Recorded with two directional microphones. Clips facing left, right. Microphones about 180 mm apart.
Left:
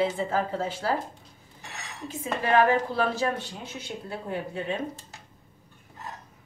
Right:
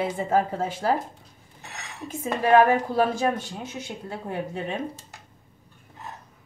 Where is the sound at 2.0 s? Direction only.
45° right (ahead or behind).